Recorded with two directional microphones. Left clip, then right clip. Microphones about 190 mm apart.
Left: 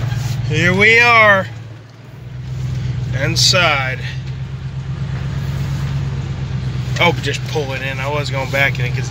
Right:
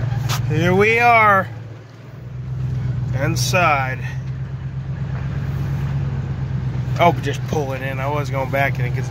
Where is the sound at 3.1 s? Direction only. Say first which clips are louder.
Left 5 dB; 10° right (ahead or behind).